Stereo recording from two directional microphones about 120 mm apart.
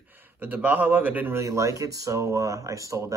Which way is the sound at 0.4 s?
15° right (ahead or behind).